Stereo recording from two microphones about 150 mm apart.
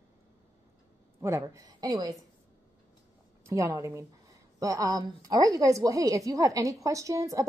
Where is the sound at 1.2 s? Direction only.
20° right (ahead or behind).